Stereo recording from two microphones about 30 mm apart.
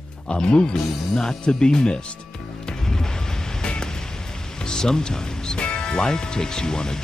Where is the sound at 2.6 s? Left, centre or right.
Centre.